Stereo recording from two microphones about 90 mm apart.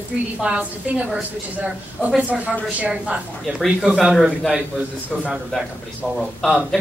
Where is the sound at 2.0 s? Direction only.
15° right (ahead or behind).